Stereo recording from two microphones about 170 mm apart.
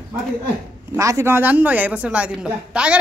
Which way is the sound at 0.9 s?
20° right (ahead or behind).